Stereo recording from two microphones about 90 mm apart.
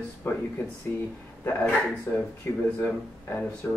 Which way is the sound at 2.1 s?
20° left (ahead or behind).